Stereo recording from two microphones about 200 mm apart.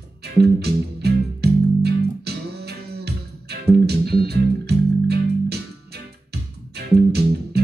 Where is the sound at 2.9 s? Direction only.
55° right (ahead or behind).